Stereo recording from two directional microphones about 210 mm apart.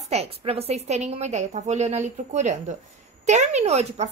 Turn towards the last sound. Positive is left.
turn(degrees=-30)  # may be behind; listen again after turning